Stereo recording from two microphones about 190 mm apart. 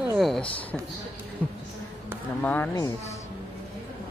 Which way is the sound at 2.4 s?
10° left (ahead or behind).